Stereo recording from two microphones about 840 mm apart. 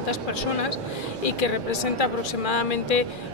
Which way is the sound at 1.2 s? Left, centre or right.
Left.